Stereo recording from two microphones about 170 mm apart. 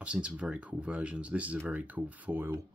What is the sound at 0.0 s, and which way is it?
Speech, 5° right (ahead or behind).